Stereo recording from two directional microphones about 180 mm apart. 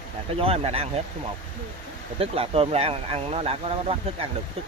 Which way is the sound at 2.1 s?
30° right (ahead or behind).